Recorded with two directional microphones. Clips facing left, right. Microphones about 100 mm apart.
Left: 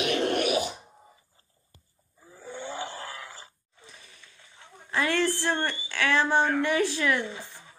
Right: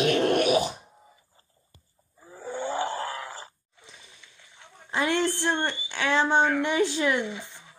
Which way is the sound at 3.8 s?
20° right (ahead or behind).